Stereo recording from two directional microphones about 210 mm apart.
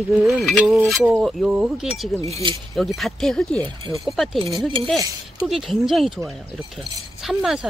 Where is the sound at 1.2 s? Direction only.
Centre (ahead or behind).